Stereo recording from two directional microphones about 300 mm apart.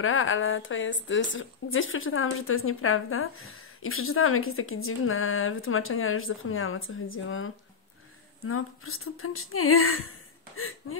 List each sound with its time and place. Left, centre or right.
0.0 s speech: left